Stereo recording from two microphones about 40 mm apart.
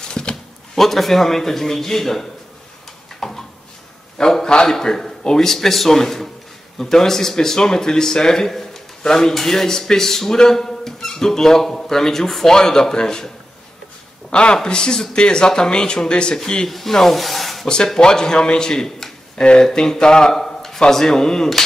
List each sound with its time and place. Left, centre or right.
0.1 s a sound: left
0.7 s speech: centre
3.2 s a sound: centre
4.6 s speech: centre
14.3 s speech: left
16.6 s speech: centre
17.9 s speech: centre